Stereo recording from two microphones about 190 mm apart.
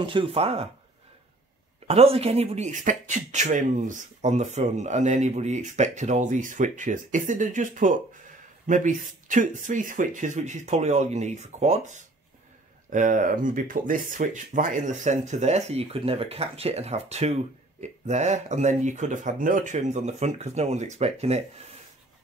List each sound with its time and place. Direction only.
0.0 s speech: 25° right (ahead or behind)
1.9 s speech: 30° right (ahead or behind)